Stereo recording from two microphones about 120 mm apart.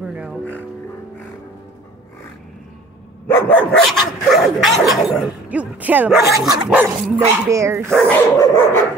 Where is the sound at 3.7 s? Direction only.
5° left (ahead or behind).